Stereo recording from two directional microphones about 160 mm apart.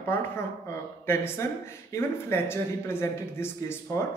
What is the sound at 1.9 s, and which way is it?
Speech, 15° left (ahead or behind).